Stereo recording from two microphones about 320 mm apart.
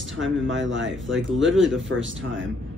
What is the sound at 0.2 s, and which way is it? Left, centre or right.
A woman's voice, right.